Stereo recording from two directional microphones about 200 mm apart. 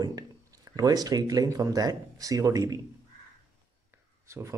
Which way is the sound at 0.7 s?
20° right (ahead or behind).